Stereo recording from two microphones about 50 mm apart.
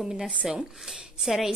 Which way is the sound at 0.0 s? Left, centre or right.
Centre.